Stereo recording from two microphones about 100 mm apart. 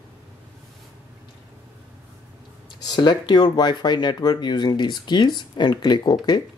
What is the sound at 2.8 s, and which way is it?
Speech, 45° left (ahead or behind).